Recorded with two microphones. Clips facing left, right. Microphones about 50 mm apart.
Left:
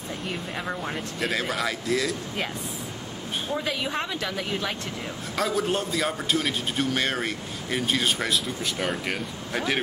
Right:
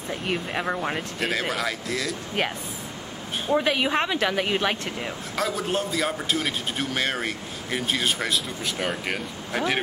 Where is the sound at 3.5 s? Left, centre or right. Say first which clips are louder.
Right 7 dB; right.